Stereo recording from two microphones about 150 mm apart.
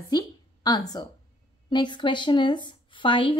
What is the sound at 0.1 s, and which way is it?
A woman's voice, 30° left (ahead or behind).